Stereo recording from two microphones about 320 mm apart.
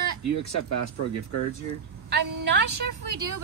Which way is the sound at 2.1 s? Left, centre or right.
Right.